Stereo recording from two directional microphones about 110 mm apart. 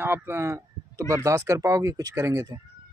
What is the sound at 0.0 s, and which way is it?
Speech, 20° right (ahead or behind).